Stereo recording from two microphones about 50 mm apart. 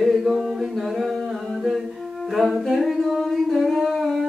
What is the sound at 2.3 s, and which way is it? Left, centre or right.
Humming, centre.